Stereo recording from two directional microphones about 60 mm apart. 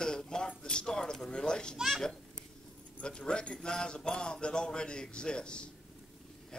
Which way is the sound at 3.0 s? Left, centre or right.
Centre.